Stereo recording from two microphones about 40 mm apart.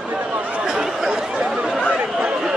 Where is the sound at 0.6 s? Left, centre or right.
Centre.